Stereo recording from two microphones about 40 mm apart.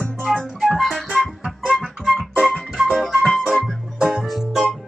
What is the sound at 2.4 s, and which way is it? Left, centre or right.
Music, centre.